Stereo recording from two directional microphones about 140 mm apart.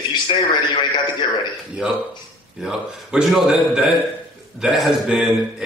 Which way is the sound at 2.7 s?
5° right (ahead or behind).